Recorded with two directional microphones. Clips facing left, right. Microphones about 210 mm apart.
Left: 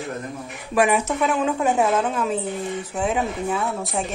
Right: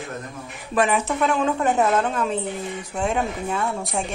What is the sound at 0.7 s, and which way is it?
A woman's voice, 10° left (ahead or behind).